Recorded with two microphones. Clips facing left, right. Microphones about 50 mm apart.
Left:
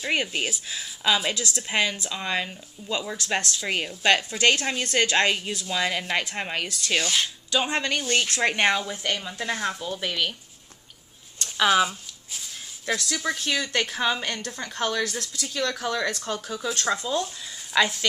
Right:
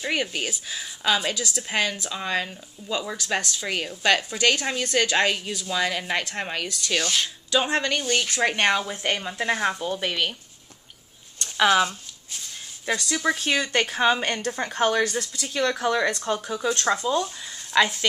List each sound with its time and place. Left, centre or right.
0.1 s speech: centre
1.7 s speech: centre
2.0 s speech: centre
3.6 s speech: centre
6.2 s speech: centre
7.5 s speech: centre
7.8 s speech: centre
8.7 s speech: centre
11.3 s a sound: centre
12.8 s speech: centre
14.2 s speech: right
16.6 s speech: centre